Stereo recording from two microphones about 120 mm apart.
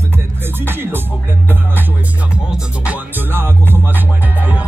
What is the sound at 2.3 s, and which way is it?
Music, 10° right (ahead or behind).